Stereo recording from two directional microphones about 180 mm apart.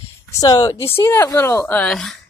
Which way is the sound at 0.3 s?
20° left (ahead or behind).